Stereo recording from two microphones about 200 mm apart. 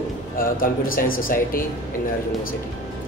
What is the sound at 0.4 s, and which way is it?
Speech, 45° left (ahead or behind).